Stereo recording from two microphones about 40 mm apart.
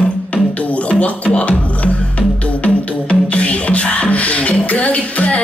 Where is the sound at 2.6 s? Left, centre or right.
Left.